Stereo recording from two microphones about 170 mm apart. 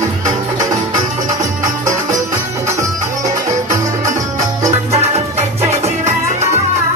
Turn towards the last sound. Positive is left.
turn(degrees=-40)  # may be behind; listen again after turning